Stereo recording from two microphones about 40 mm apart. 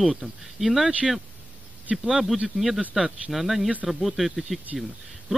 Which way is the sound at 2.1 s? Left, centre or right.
Centre.